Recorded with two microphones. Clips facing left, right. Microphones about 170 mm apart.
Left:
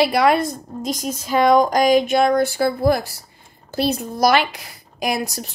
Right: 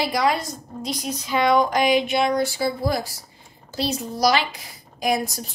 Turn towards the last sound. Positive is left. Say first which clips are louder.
# even
turn(degrees=70)  # may be behind; listen again after turning